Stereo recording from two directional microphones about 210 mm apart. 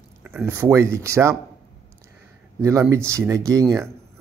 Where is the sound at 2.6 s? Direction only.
15° right (ahead or behind).